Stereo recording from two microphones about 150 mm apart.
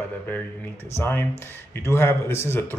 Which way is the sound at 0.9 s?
15° left (ahead or behind).